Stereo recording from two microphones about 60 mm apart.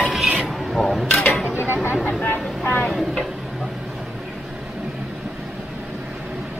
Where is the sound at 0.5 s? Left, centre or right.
Centre.